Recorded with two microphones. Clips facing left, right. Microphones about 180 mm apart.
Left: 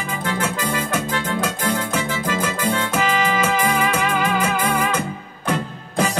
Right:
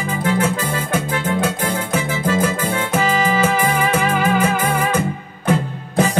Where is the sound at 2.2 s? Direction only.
30° right (ahead or behind).